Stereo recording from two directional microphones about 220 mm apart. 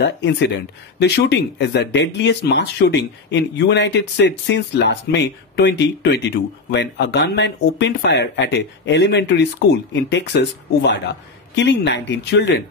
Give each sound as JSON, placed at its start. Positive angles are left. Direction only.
{"t": 0.0, "sound": "speech", "side_deg": 50}